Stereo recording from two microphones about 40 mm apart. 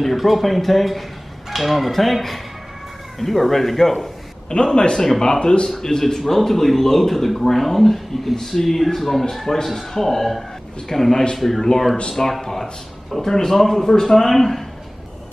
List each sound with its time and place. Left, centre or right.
0.0 s speech: centre
4.7 s a man's voice: left; by 14.6 s centre